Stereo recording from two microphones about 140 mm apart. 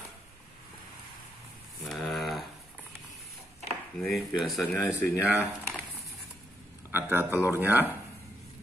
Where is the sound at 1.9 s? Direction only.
Centre (ahead or behind).